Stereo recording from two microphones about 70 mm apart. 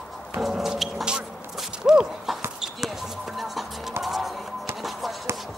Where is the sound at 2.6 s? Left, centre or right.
Centre.